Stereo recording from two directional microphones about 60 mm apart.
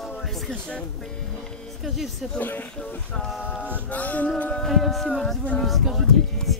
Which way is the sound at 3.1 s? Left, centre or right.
Centre.